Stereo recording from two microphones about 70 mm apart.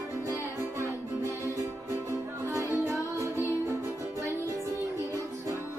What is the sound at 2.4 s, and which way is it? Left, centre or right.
Music, right.